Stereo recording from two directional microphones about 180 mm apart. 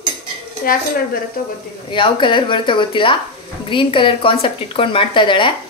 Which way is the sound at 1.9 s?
25° left (ahead or behind).